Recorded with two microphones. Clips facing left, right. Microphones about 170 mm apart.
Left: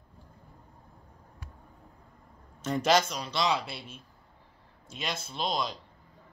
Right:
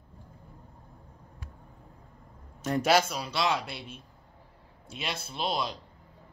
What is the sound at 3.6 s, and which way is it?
Speech, 60° right (ahead or behind).